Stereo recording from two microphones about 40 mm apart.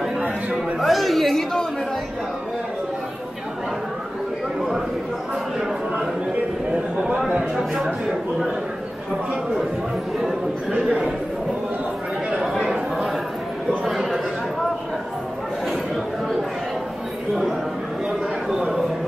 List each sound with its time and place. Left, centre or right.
0.7 s chatter: centre
7.3 s speech: centre
10.9 s speech: right
13.8 s a sound: centre